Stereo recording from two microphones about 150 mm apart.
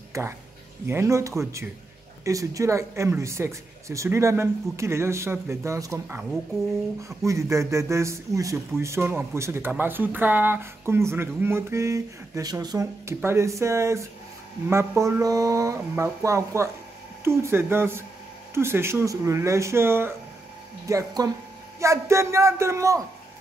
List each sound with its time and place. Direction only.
0.1 s a man's voice: 20° right (ahead or behind)